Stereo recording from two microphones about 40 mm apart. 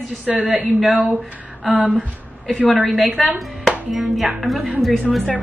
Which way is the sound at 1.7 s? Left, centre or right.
Right.